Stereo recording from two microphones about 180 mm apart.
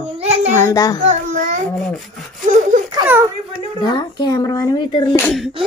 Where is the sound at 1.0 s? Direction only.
45° right (ahead or behind).